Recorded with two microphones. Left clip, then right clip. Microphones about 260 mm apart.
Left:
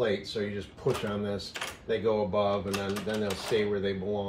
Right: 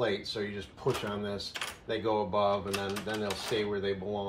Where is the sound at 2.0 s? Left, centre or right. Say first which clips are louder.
Left 1 dB; centre.